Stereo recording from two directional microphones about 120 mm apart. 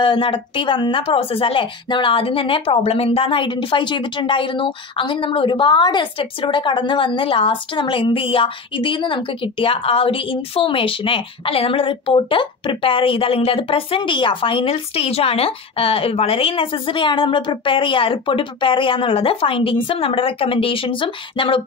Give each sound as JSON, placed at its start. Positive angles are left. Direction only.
{"t": 0.0, "sound": "speech", "side_deg": 45}